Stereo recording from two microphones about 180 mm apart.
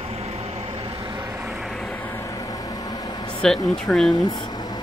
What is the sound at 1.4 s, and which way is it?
Vehicle, centre (ahead or behind).